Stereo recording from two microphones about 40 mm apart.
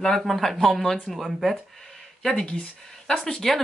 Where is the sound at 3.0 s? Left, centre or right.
Centre.